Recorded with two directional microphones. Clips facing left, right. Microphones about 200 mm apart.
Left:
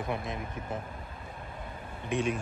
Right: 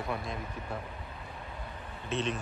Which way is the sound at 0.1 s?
20° left (ahead or behind).